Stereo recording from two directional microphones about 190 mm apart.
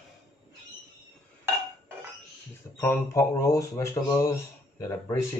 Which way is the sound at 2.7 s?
10° left (ahead or behind).